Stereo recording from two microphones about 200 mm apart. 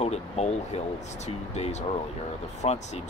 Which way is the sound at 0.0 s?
35° left (ahead or behind).